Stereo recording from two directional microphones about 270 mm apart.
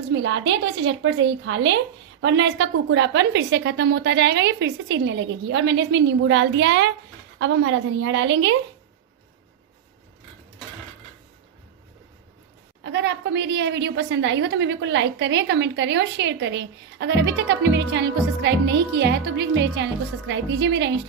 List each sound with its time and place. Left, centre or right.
0.1 s a woman's voice: right
12.8 s a woman's voice: right